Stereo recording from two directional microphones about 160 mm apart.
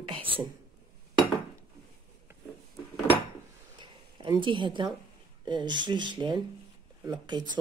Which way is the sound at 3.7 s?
30° right (ahead or behind).